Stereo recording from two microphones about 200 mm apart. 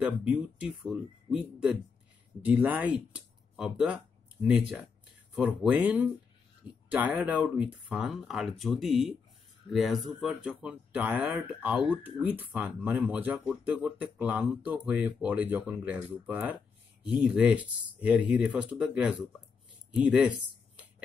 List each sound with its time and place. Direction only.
0.0 s speech: 5° right (ahead or behind)